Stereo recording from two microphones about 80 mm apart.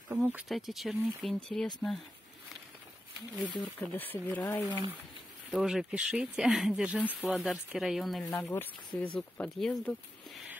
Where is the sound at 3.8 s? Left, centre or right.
Centre.